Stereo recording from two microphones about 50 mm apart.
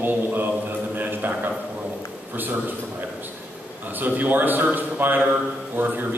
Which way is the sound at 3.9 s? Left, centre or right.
Right.